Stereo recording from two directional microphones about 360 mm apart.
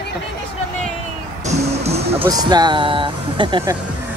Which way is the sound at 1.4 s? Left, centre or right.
Centre.